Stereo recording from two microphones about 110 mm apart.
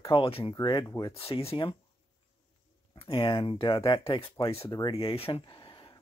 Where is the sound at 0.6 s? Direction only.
45° left (ahead or behind).